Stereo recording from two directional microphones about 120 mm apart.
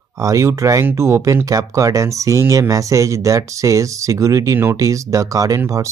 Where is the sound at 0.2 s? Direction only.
25° right (ahead or behind).